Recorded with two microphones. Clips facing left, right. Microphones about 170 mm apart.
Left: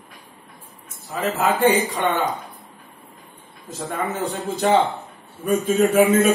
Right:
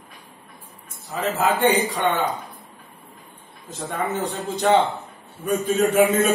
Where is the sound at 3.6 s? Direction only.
Centre (ahead or behind).